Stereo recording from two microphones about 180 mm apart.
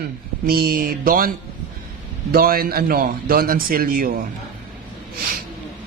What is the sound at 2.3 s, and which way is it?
A man's voice, 55° right (ahead or behind).